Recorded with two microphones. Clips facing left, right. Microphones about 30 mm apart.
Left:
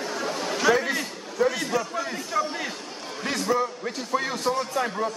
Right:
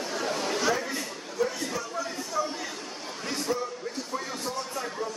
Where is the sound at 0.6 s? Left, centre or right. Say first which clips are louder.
Left 10 dB; left.